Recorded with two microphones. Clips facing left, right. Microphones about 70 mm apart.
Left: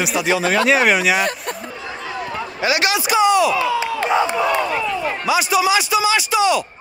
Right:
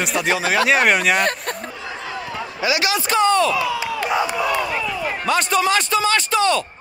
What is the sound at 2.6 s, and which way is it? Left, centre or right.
Speech, left.